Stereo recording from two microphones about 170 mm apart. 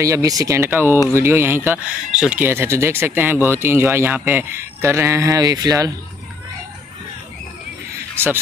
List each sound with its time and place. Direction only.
0.0 s speech: 20° right (ahead or behind)